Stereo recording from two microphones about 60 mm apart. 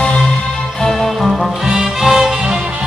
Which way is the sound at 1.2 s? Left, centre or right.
Centre.